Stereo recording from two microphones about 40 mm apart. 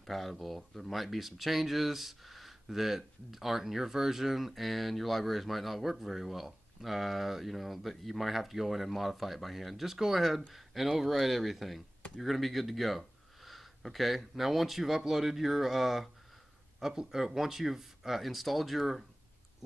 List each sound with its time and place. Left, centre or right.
0.0 s speech: centre